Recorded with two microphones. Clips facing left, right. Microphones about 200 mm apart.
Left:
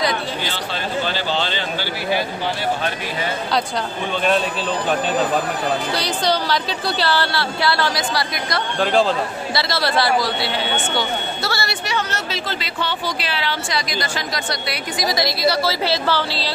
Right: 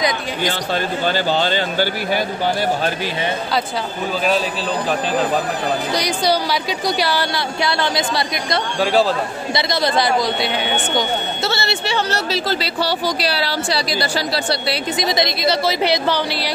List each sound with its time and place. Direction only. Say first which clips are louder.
1.0 s speech: right 4 dB; 45° right (ahead or behind)
5.9 s speech: right 2 dB; 10° right (ahead or behind)
8.7 s speech: right 1 dB; 5° right (ahead or behind)
9.5 s speech: right 4 dB; 20° right (ahead or behind)